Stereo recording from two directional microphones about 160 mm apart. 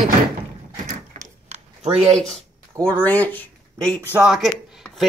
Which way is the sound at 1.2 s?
55° right (ahead or behind).